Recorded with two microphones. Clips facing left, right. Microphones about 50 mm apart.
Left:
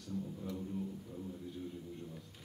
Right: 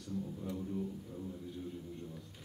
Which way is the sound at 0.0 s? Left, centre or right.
Centre.